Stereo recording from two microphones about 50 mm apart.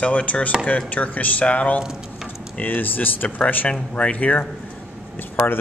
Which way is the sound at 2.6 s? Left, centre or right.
Left.